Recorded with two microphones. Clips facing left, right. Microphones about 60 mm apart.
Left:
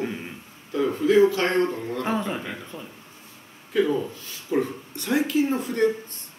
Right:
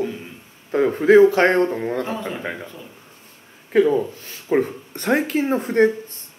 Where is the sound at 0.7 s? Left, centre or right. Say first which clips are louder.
Right 7 dB; right.